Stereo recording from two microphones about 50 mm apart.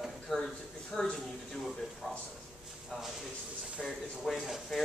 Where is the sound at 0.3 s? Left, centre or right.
Centre.